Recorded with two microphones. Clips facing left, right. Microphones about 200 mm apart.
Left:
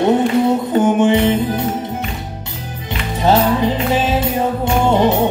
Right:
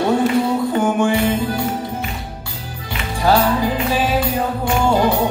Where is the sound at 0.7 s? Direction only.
20° left (ahead or behind).